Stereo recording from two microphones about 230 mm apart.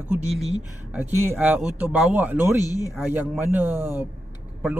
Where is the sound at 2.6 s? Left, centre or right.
Centre.